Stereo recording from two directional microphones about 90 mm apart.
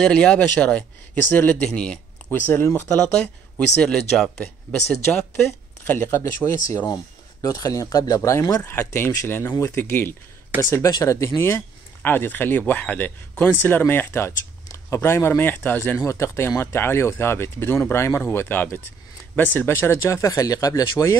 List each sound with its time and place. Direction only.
0.0 s speech: 10° left (ahead or behind)
3.0 s speech: 10° left (ahead or behind)
5.9 s a man's voice: 25° left (ahead or behind)
8.6 s a man's voice: 25° left (ahead or behind)
16.0 s a man's voice: 35° left (ahead or behind)